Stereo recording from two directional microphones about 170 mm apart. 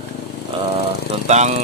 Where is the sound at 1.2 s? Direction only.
40° right (ahead or behind).